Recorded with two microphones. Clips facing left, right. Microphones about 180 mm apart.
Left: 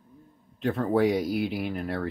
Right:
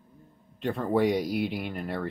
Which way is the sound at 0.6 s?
Centre (ahead or behind).